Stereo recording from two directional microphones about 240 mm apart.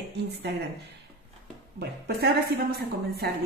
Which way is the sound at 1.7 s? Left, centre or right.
Right.